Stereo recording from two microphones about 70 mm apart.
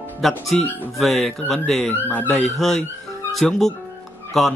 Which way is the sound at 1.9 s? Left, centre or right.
Left.